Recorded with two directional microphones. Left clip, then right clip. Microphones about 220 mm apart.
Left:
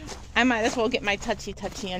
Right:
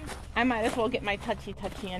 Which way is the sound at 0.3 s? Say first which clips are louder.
Left 5 dB; 35° left (ahead or behind).